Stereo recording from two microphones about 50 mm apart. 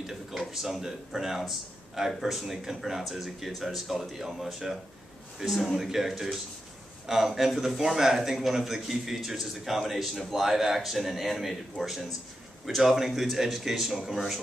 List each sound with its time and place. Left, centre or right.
0.0 s a man's voice: centre